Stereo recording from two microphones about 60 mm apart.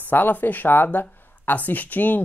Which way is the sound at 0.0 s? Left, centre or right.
Left.